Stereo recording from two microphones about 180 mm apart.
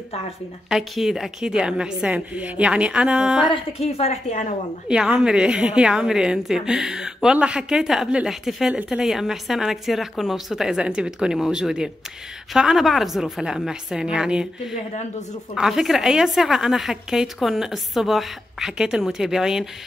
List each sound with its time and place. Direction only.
0.7 s a woman's voice: centre (ahead or behind)
3.5 s a woman's voice: 35° left (ahead or behind)
4.8 s a woman's voice: 5° right (ahead or behind)